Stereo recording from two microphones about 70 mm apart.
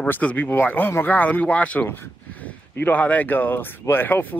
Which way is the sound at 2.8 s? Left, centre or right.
Left.